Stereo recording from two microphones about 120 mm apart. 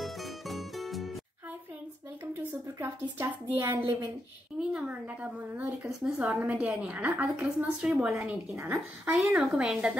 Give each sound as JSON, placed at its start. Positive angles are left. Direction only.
{"t": 0.0, "sound": "music", "side_deg": 0}
{"t": 2.5, "sound": "a woman's voice", "side_deg": -20}
{"t": 4.6, "sound": "a woman's voice", "side_deg": -10}